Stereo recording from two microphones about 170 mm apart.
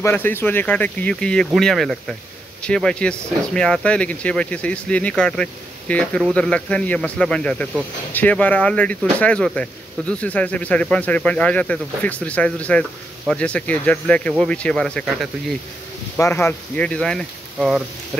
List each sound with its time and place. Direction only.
0.0 s a man's voice: 10° left (ahead or behind)
16.2 s speech: 15° left (ahead or behind); by 17.8 s centre (ahead or behind)